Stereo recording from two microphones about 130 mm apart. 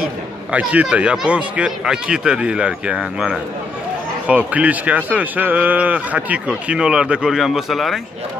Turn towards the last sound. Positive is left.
turn(degrees=0)  # may be behind; listen again after turning